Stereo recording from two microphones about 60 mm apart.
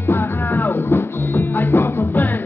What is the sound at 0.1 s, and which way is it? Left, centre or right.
Music, left.